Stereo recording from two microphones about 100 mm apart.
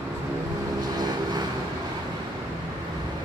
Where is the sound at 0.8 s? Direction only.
45° right (ahead or behind).